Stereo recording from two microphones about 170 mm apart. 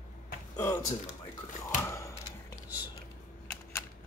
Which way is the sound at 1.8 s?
15° left (ahead or behind).